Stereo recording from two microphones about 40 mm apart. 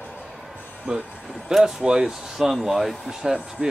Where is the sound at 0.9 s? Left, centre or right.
Right.